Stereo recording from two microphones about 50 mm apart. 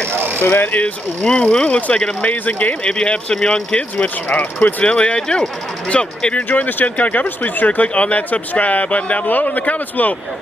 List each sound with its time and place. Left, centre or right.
0.1 s a sound: right
0.4 s speech: left
1.2 s speech: centre
2.2 s speech: left
2.8 s speech: left
3.9 s speech: left
4.8 s speech: left